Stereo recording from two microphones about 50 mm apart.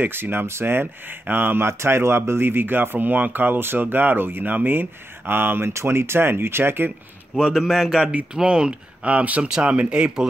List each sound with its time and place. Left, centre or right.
0.1 s speech: right
5.7 s speech: right
7.5 s a man's voice: centre
8.0 s speech: right
8.4 s speech: centre